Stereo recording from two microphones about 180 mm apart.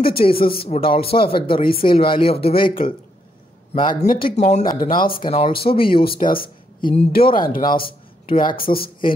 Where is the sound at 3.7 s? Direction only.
30° left (ahead or behind); by 5.1 s 50° left (ahead or behind).